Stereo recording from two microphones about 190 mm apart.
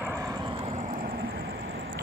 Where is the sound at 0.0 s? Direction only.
15° right (ahead or behind).